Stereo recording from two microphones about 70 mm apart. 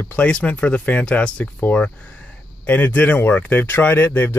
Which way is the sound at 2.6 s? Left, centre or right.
Left.